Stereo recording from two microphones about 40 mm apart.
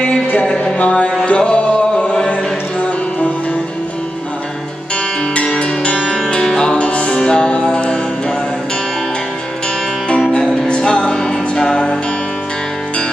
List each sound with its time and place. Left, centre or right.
0.7 s speech: left
1.2 s music: left
5.3 s music: left
6.4 s music: centre
10.3 s music: centre